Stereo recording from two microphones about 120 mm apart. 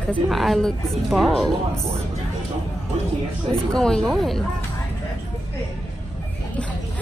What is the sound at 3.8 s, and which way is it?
Speech, 5° left (ahead or behind).